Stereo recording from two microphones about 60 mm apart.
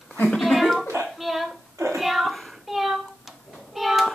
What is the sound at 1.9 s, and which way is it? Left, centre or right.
Child singing, centre.